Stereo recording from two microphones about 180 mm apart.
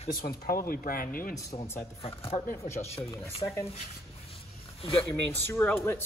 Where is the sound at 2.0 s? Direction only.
30° left (ahead or behind).